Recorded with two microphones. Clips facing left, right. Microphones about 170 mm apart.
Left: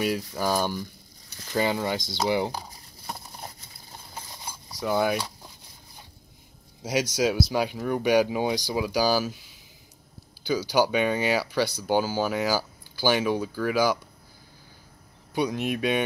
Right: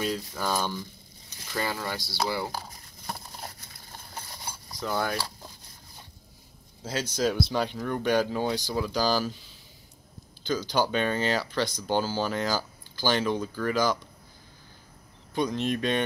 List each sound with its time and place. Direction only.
0.0 s speech: 10° left (ahead or behind)
4.6 s speech: 10° left (ahead or behind)
6.8 s speech: 10° left (ahead or behind)
15.3 s speech: 10° left (ahead or behind)